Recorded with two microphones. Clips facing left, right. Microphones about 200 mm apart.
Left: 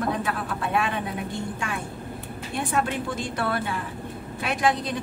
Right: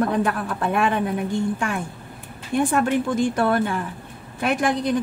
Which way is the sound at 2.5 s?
50° right (ahead or behind).